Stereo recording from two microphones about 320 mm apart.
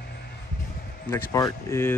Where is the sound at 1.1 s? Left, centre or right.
Centre.